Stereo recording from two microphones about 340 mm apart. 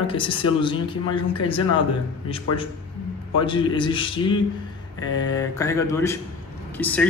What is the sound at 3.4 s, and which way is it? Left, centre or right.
Speech, centre.